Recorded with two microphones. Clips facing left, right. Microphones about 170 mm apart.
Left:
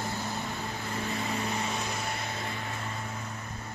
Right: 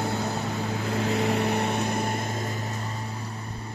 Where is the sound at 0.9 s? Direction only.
90° right; by 3.3 s 35° right (ahead or behind).